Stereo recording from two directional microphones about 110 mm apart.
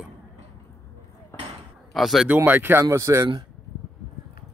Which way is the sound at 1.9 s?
Centre (ahead or behind).